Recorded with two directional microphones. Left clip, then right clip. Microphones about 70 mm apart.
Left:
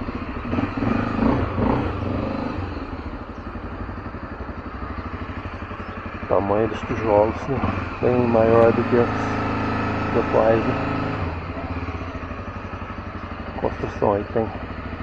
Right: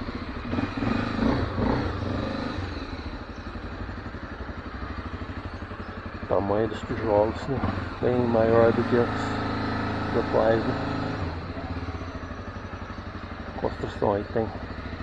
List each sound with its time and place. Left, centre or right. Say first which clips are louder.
0.5 s vehicle: left 4 dB; centre
1.2 s a sound: left 5 dB; centre
1.8 s vehicle: left 4 dB; centre
6.2 s speech: left 5 dB; right
14.0 s speech: left 4 dB; right